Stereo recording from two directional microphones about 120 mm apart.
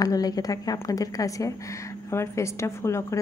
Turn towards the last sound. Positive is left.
turn(degrees=25)  # may be behind; listen again after turning